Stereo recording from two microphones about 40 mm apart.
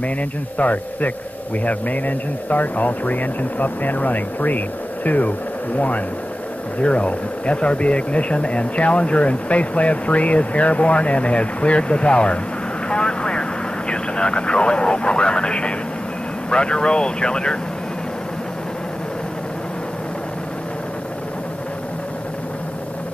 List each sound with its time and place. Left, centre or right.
0.6 s speech: left
6.8 s speech: left
12.8 s vehicle: left
16.4 s speech: left